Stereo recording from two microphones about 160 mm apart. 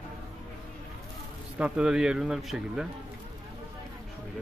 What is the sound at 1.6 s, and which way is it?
Speech, 5° right (ahead or behind).